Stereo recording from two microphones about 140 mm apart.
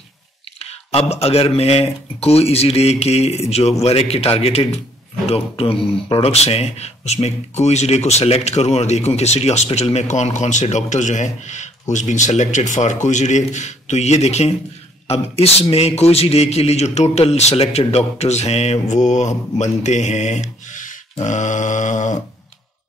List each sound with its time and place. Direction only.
0.6 s clicking: 45° left (ahead or behind)
1.1 s speech: 45° left (ahead or behind); by 22.2 s 60° left (ahead or behind)